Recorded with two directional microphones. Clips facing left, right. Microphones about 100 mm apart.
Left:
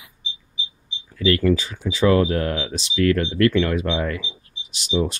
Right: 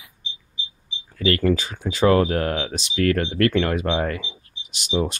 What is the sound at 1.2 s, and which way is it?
Speech, 50° right (ahead or behind).